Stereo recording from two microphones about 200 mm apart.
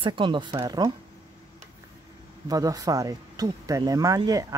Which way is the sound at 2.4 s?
15° right (ahead or behind).